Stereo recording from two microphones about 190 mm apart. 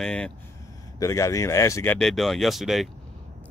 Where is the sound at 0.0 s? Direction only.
5° left (ahead or behind).